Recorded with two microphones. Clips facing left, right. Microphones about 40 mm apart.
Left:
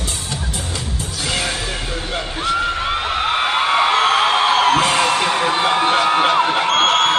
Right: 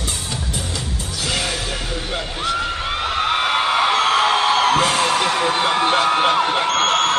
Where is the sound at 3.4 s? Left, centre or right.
Centre.